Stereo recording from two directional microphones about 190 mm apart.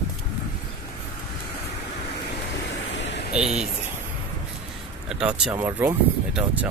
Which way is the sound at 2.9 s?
70° left (ahead or behind).